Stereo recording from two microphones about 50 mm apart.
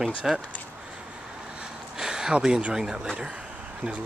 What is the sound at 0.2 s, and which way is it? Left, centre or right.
Speech, centre.